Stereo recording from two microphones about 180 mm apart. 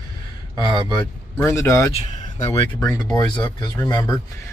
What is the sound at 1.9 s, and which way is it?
Speech, 35° left (ahead or behind).